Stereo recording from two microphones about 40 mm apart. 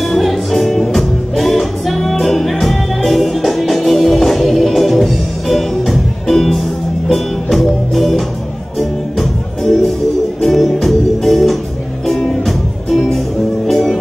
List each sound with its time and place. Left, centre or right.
0.0 s music: centre